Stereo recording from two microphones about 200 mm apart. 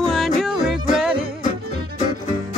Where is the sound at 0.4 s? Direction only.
Centre (ahead or behind).